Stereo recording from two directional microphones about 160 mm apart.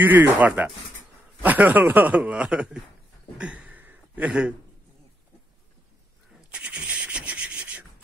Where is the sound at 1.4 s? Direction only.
10° right (ahead or behind).